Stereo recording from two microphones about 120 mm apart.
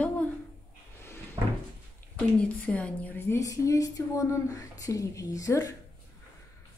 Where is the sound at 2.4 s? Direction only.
10° left (ahead or behind); by 5.7 s 30° left (ahead or behind).